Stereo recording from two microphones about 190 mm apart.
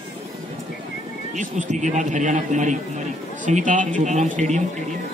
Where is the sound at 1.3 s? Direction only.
40° right (ahead or behind).